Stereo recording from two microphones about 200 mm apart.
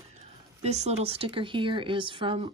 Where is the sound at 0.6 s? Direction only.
30° right (ahead or behind).